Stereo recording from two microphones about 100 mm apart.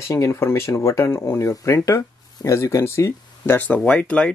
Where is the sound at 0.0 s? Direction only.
30° left (ahead or behind).